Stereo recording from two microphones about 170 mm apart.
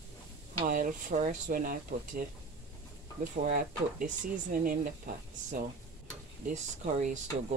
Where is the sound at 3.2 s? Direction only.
50° right (ahead or behind).